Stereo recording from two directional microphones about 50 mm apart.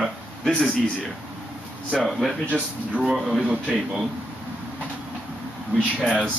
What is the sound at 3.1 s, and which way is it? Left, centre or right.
Speech, centre.